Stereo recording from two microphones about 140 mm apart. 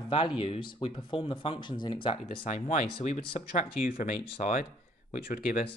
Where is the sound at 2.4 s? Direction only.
65° left (ahead or behind).